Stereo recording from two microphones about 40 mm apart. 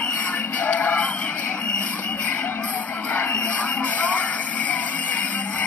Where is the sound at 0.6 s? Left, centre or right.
Left.